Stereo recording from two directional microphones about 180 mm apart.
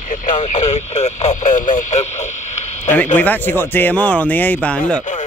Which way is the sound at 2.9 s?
10° left (ahead or behind).